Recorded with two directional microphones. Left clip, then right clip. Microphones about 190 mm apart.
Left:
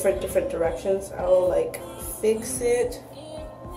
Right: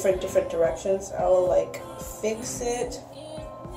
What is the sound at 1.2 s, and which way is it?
A woman's voice, centre (ahead or behind).